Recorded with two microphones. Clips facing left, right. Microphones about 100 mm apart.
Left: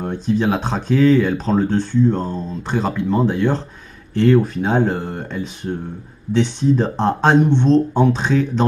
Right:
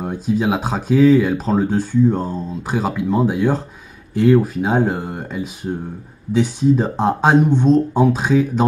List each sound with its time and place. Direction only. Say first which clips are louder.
0.0 s speech: even; 5° right (ahead or behind)